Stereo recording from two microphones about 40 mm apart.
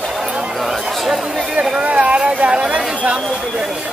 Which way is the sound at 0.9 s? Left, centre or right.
Centre.